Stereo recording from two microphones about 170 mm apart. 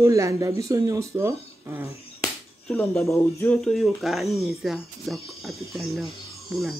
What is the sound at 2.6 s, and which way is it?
Speech, 5° left (ahead or behind).